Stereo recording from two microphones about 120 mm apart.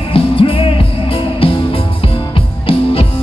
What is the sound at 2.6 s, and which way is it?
Music, 50° left (ahead or behind).